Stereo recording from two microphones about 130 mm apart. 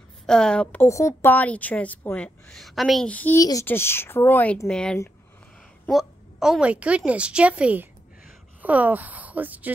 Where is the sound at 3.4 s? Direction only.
25° left (ahead or behind).